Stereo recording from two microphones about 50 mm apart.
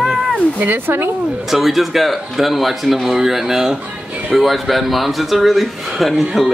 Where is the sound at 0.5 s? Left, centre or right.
Right.